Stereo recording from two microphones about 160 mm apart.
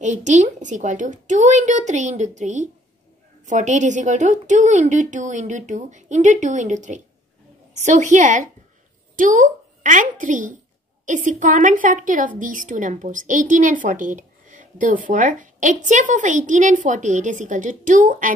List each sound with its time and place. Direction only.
0.0 s a woman's voice: 50° right (ahead or behind)